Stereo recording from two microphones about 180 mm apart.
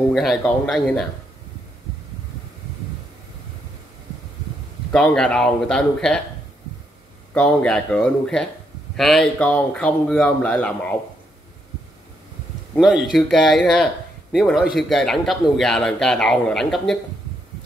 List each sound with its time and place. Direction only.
0.1 s a man's voice: centre (ahead or behind)
4.9 s a man's voice: 5° left (ahead or behind)
7.3 s a man's voice: 5° left (ahead or behind)
12.7 s a man's voice: centre (ahead or behind)